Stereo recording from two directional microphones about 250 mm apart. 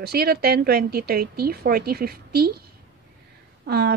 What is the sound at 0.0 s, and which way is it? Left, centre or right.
Speech, right.